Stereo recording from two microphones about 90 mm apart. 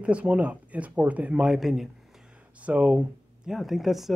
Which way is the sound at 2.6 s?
15° right (ahead or behind).